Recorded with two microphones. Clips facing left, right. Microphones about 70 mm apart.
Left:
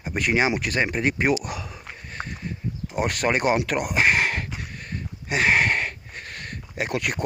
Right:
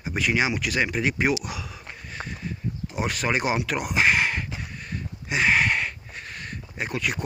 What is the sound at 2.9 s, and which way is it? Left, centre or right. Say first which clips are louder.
Speech: left 3 dB; left.